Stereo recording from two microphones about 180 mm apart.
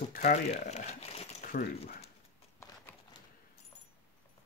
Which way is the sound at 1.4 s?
50° left (ahead or behind).